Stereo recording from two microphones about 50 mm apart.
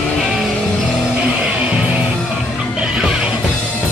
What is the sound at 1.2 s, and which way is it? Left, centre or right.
Music, centre.